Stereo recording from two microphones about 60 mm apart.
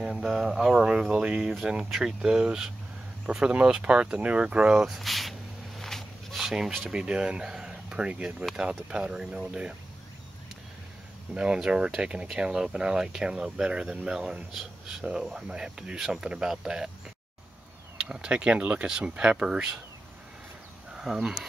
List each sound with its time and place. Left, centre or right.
0.0 s a sound: centre
0.5 s speech: centre
5.8 s a sound: centre
6.3 s speech: centre
11.3 s speech: centre
14.5 s speech: centre
15.0 s speech: centre
17.9 s speech: centre
20.9 s speech: centre